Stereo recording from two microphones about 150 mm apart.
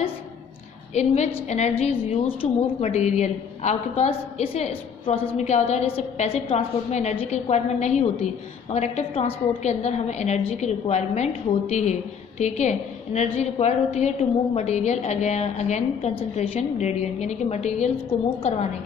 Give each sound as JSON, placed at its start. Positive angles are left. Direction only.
{"t": 0.9, "sound": "a woman's voice", "side_deg": 45}